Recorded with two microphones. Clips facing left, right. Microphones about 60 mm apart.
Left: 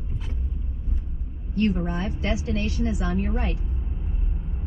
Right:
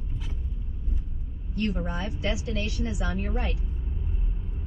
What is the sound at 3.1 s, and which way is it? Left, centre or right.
Speech, centre.